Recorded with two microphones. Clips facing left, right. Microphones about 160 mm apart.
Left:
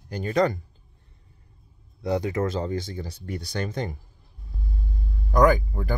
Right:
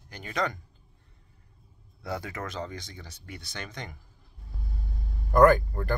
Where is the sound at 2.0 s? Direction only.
20° left (ahead or behind).